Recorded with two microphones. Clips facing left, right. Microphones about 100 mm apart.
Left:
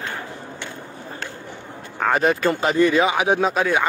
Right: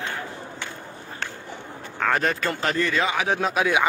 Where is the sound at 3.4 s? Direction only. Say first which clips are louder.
Left 2 dB; 5° right (ahead or behind).